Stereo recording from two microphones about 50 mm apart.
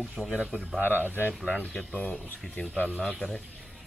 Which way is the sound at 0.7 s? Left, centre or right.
Left.